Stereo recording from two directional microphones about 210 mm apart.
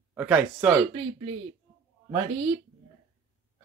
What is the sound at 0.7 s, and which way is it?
Speech, 25° right (ahead or behind).